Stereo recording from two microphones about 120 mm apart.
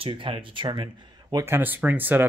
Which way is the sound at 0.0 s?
45° right (ahead or behind).